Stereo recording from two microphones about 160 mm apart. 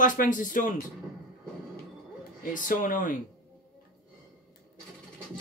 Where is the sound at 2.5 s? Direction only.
55° left (ahead or behind).